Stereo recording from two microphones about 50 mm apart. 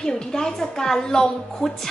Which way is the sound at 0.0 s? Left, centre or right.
Centre.